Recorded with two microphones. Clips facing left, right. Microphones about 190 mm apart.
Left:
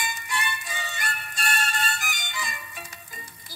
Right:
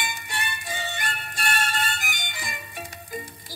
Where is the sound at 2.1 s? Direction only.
55° right (ahead or behind).